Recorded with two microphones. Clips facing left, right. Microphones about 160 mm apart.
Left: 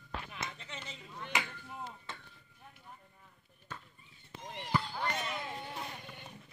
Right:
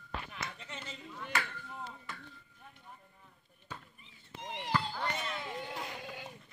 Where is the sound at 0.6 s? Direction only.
5° right (ahead or behind).